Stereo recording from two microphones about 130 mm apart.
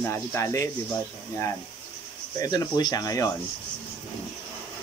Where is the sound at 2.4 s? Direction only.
30° left (ahead or behind).